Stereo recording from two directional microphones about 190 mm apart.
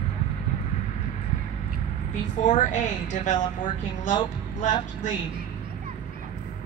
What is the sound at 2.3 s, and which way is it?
A woman's voice, 40° left (ahead or behind).